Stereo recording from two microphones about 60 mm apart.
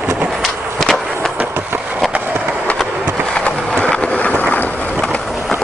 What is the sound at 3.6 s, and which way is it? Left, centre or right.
Vehicle, centre.